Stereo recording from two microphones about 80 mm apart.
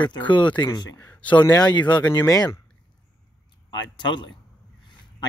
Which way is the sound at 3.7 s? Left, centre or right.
Left.